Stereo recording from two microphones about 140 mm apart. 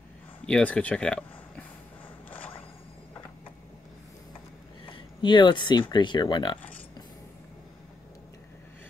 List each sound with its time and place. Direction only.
0.5 s speech: 10° left (ahead or behind)
2.2 s a sound: 10° left (ahead or behind)
4.8 s speech: 35° left (ahead or behind)